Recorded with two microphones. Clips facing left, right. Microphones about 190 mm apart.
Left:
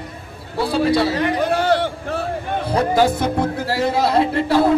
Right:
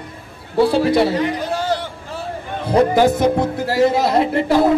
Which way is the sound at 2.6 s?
20° right (ahead or behind).